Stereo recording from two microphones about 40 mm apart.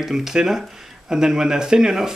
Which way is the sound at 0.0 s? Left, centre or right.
Centre.